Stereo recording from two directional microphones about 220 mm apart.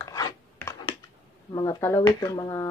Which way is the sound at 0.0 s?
15° left (ahead or behind).